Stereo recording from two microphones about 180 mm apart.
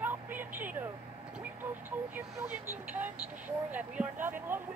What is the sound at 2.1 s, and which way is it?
A woman's voice, 10° right (ahead or behind).